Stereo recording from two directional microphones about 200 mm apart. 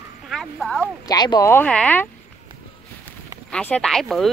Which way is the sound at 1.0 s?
20° left (ahead or behind).